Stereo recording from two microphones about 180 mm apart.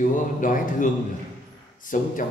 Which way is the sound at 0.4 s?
45° left (ahead or behind).